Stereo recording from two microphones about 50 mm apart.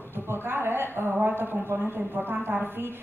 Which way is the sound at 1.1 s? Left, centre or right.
Right.